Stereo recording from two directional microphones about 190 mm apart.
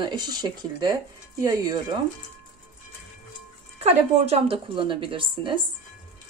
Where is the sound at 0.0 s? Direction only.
25° right (ahead or behind).